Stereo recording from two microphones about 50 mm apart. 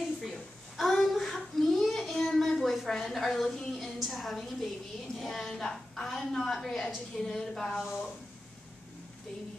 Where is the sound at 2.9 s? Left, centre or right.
Centre.